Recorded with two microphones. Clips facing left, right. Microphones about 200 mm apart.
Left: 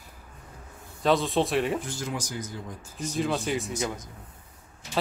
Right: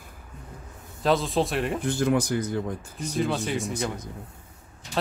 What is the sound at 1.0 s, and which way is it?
Speech, centre (ahead or behind).